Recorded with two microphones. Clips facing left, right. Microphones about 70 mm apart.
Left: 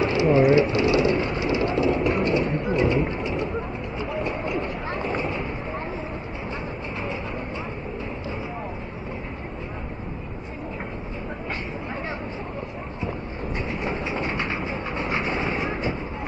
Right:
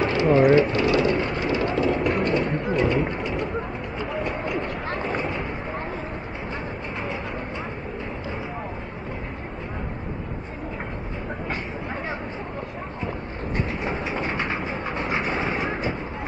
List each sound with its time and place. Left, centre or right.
0.0 s vehicle: right
2.7 s music: right
4.3 s a sound: right
13.8 s train: right
15.0 s vehicle: centre
15.7 s a sound: right